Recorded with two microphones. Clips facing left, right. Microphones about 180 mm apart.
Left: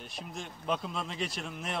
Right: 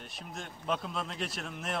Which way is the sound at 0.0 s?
Centre (ahead or behind).